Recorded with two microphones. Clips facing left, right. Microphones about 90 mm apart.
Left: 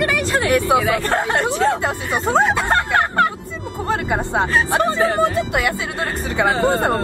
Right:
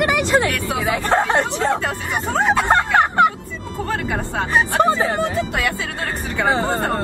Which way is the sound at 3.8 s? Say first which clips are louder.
Left 4 dB; 20° left (ahead or behind).